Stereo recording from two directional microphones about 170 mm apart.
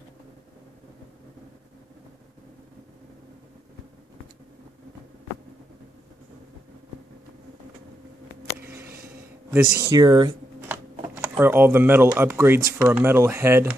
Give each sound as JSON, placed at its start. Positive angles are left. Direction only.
{"t": 8.5, "sound": "a sound", "side_deg": -15}
{"t": 9.8, "sound": "speech", "side_deg": -25}
{"t": 11.1, "sound": "speech", "side_deg": -10}